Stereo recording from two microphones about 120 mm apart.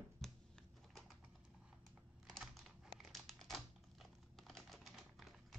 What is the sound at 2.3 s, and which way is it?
Computer keyboard, centre (ahead or behind).